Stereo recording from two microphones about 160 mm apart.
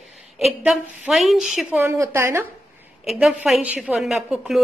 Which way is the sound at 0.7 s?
Centre (ahead or behind).